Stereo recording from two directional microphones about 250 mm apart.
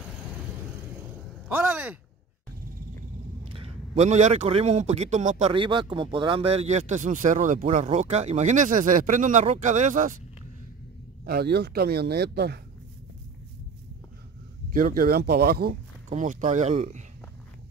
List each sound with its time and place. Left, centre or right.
1.5 s a sound: centre
3.5 s a man's voice: right
11.2 s speech: right
14.7 s speech: right